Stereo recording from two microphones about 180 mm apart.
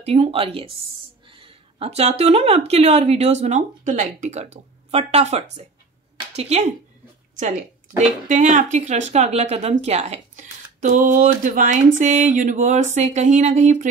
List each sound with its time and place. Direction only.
0.0 s a woman's voice: 35° right (ahead or behind)